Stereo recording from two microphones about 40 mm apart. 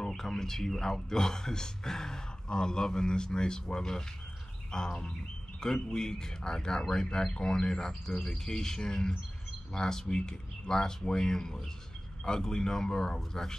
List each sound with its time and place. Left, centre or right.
0.0 s speech: centre